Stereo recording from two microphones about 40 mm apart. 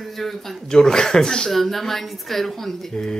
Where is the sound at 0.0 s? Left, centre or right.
Centre.